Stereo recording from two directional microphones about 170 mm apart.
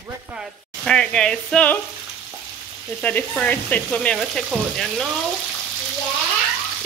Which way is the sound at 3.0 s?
5° left (ahead or behind).